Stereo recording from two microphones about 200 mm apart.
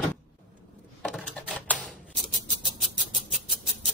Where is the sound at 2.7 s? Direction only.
Centre (ahead or behind).